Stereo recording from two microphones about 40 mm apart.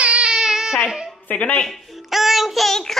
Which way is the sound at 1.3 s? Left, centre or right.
Left.